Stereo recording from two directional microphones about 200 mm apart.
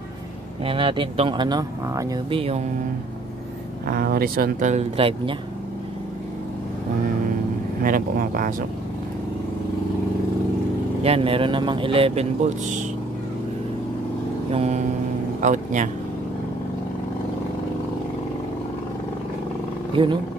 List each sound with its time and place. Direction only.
0.7 s speech: 25° right (ahead or behind)
3.8 s speech: 50° right (ahead or behind); by 5.3 s 25° right (ahead or behind)
7.8 s speech: 45° right (ahead or behind)
11.0 s speech: 30° right (ahead or behind)
14.5 s music: 30° right (ahead or behind)
15.4 s a man's voice: 40° right (ahead or behind)
20.0 s speech: 25° right (ahead or behind)